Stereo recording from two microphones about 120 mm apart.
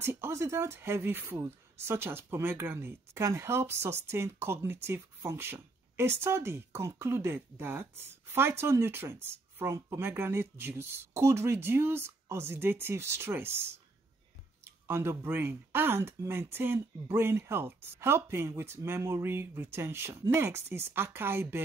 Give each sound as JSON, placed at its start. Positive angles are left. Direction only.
{"t": 0.0, "sound": "a woman's voice", "side_deg": -20}